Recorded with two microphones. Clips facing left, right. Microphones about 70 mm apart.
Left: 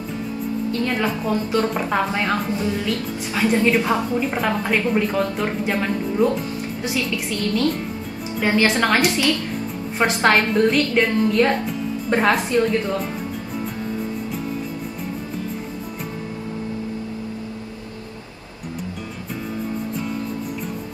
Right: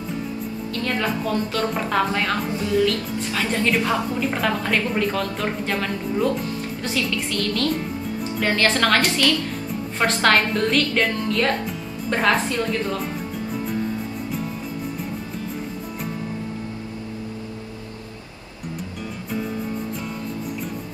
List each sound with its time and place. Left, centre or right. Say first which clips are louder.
0.7 s a woman's voice: left 1 dB; centre